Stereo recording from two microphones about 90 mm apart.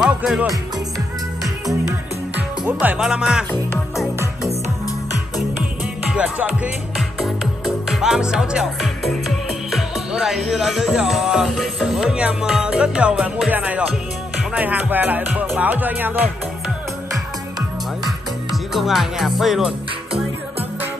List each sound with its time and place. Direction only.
0.0 s music: 5° right (ahead or behind)
2.3 s music: 20° right (ahead or behind)
3.0 s speech: 5° right (ahead or behind)
6.0 s music: 10° right (ahead or behind)
7.0 s music: centre (ahead or behind)
11.4 s speech: centre (ahead or behind); by 13.8 s 15° right (ahead or behind)
14.5 s music: 15° right (ahead or behind)
18.0 s music: centre (ahead or behind)